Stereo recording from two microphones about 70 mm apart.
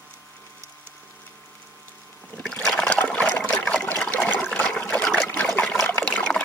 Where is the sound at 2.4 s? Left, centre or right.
Centre; by 3.4 s left.